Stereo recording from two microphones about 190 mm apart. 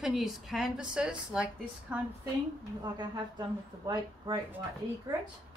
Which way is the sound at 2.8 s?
20° right (ahead or behind).